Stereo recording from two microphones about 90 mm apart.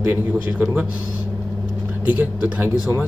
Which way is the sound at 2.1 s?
20° right (ahead or behind).